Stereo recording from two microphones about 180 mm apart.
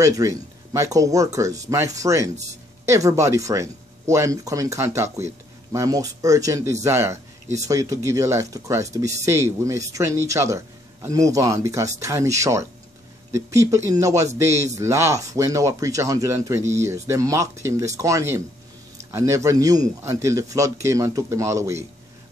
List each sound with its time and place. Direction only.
0.0 s speech: 20° right (ahead or behind)